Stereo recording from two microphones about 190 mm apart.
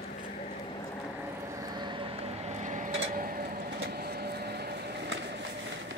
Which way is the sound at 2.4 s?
40° right (ahead or behind).